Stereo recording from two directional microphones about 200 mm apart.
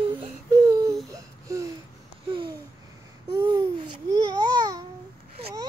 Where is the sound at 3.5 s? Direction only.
20° right (ahead or behind).